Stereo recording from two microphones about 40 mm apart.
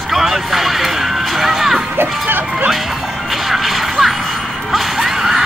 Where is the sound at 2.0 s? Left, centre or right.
Right.